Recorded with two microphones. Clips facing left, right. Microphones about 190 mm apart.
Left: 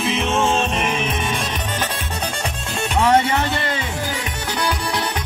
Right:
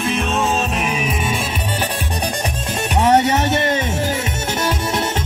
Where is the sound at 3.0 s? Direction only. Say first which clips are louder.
Right 2 dB; 20° right (ahead or behind).